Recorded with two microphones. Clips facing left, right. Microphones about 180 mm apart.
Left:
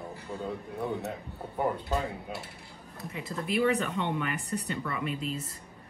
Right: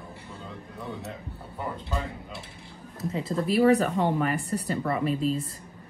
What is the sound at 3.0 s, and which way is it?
Speech, 30° right (ahead or behind).